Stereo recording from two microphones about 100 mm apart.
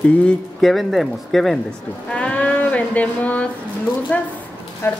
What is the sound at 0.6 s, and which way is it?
Speech, centre (ahead or behind).